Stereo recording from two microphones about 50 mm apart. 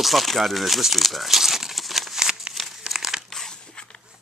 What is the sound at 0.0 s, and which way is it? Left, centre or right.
Crumpling, centre.